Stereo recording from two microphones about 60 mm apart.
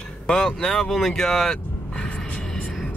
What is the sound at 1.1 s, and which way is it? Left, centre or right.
Vehicle, centre.